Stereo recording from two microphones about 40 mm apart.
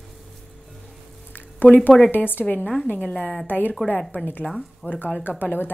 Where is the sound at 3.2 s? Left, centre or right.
Left.